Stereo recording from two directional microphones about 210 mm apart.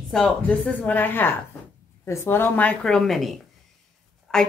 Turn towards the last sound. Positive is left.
turn(degrees=0)  # may be behind; listen again after turning